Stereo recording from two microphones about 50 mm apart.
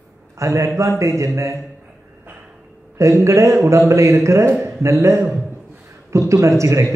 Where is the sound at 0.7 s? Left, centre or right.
Right.